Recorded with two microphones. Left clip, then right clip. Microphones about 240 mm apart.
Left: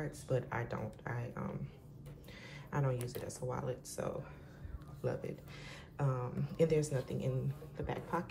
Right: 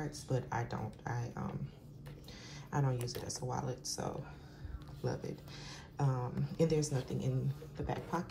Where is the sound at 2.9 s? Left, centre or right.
Centre.